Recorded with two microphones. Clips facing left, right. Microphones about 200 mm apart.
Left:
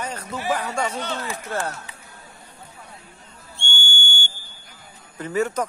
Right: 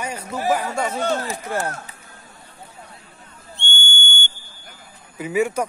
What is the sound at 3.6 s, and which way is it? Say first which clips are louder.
Whistle: right 1 dB; 20° right (ahead or behind).